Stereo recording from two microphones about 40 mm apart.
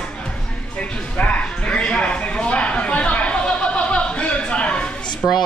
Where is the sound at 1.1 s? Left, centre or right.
Left.